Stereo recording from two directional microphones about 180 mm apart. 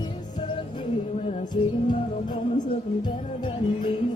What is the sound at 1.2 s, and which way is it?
Music, 25° left (ahead or behind).